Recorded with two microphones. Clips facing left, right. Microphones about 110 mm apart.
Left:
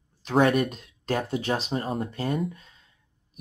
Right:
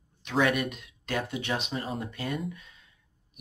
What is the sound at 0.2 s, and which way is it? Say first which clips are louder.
Speech: left 5 dB; 35° left (ahead or behind).